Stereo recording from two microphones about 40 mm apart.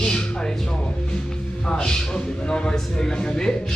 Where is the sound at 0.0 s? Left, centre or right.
Centre.